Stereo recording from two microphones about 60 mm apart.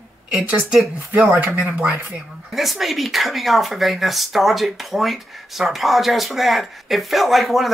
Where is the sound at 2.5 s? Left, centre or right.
Centre.